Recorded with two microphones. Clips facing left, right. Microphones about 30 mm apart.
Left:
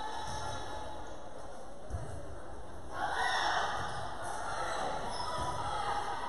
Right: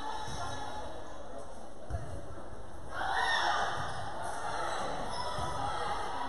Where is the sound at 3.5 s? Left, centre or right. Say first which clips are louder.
Right 1 dB; centre.